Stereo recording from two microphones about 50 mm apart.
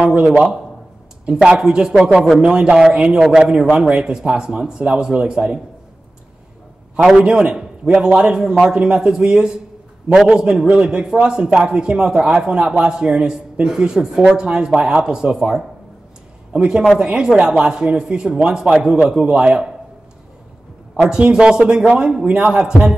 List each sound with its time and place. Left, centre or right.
0.0 s a sound: right
1.3 s a man's voice: centre
7.2 s a man's voice: centre
16.5 s a man's voice: centre
20.9 s a man's voice: centre